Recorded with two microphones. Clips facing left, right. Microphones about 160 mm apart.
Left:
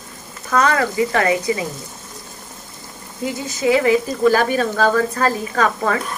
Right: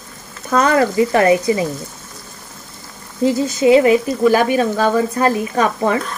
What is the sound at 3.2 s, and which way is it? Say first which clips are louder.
Speech: right 7 dB; 25° right (ahead or behind).